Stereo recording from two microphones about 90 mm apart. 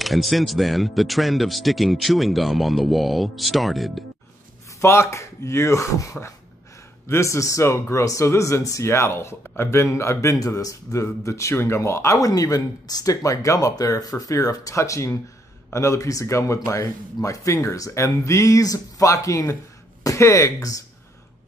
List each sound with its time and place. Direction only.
0.0 s speech: centre (ahead or behind)
4.7 s speech: 30° left (ahead or behind)